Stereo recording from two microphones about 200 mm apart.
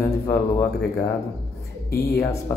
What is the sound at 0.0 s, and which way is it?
Speech, 10° left (ahead or behind).